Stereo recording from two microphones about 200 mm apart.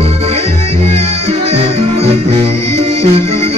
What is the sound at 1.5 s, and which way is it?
Music, 30° right (ahead or behind).